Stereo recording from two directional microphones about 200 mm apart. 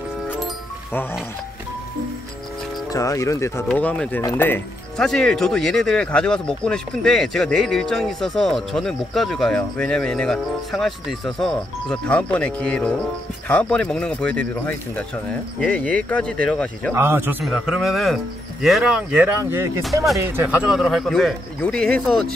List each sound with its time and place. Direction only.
2.9 s speech: 15° left (ahead or behind)
16.9 s a man's voice: 10° right (ahead or behind)
19.8 s speech: centre (ahead or behind)
20.2 s speech: 10° right (ahead or behind)